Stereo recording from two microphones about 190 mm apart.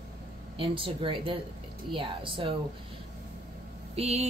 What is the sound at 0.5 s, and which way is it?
Speech, 30° right (ahead or behind).